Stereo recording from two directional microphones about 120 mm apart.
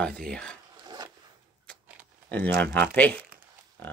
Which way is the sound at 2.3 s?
10° left (ahead or behind).